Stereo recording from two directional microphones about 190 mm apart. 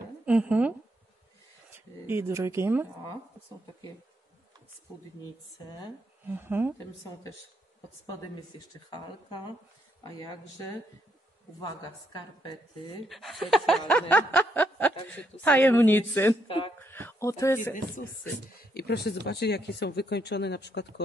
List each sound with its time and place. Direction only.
0.2 s a woman's voice: 5° right (ahead or behind)
2.0 s speech: 10° right (ahead or behind)
6.2 s speech: 10° right (ahead or behind)
8.5 s a woman's voice: 25° left (ahead or behind)
11.6 s a woman's voice: 25° left (ahead or behind)
13.1 s snicker: centre (ahead or behind)
16.4 s a woman's voice: 30° left (ahead or behind)
16.8 s speech: 10° left (ahead or behind)
18.6 s speech: 55° left (ahead or behind)